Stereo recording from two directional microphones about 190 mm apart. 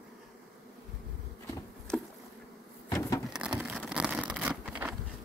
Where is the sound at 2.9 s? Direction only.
15° left (ahead or behind).